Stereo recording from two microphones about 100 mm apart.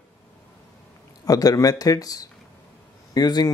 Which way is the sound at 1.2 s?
40° left (ahead or behind).